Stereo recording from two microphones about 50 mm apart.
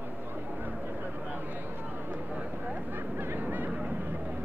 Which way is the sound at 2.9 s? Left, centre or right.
Right.